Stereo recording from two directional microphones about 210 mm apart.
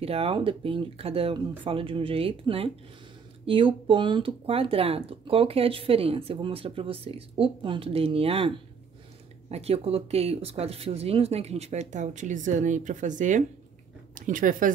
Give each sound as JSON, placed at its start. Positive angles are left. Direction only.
{"t": 0.0, "sound": "speech", "side_deg": -25}